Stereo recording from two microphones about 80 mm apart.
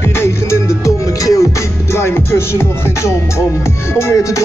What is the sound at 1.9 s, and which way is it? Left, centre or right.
Music, left.